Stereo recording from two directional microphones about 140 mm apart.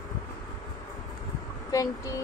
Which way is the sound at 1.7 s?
25° left (ahead or behind).